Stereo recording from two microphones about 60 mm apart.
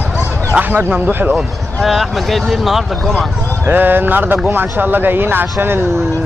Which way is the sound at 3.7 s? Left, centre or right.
Right.